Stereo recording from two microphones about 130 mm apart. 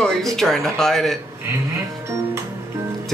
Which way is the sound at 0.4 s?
Centre (ahead or behind).